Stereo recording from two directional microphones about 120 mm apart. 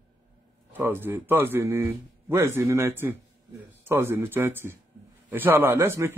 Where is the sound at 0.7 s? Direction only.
15° right (ahead or behind).